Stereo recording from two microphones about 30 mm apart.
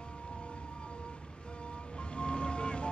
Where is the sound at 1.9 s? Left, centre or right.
Left.